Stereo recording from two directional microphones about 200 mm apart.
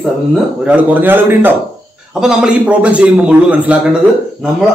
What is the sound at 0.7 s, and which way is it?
A man's voice, 10° right (ahead or behind).